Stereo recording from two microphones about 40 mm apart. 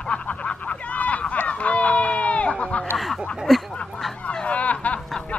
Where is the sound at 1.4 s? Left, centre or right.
Left.